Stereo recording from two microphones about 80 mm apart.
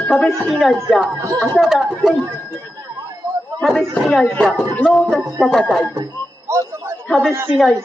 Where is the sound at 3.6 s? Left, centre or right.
Centre.